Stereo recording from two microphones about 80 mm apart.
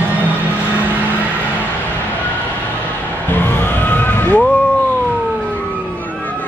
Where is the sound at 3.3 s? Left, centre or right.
Left.